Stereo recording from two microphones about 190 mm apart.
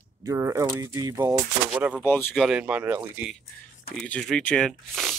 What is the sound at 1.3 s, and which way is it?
Speech, 5° right (ahead or behind).